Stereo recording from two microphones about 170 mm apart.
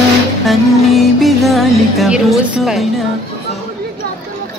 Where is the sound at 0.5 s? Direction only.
Centre (ahead or behind).